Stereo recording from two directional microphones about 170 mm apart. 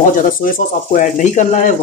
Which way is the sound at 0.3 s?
55° left (ahead or behind).